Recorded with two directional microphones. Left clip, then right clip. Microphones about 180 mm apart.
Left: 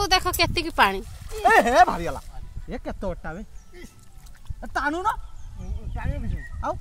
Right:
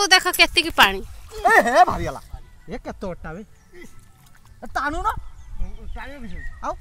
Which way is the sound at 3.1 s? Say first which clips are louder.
Even; 20° right (ahead or behind).